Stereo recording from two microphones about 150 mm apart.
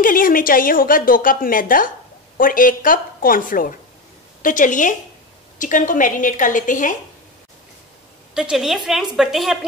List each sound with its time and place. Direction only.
0.0 s a woman's voice: 65° left (ahead or behind)
8.4 s a woman's voice: 5° right (ahead or behind)